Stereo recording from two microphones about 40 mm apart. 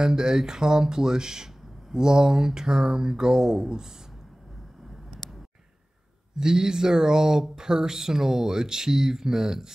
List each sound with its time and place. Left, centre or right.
0.0 s speech: centre
6.3 s speech: centre